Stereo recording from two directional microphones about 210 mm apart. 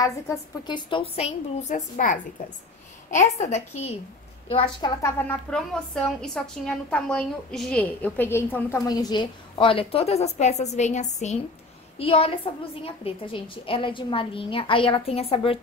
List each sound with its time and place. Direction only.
0.0 s a woman's voice: 20° left (ahead or behind)
3.1 s a woman's voice: 35° left (ahead or behind)
5.0 s a woman's voice: 5° left (ahead or behind); by 15.6 s 30° left (ahead or behind)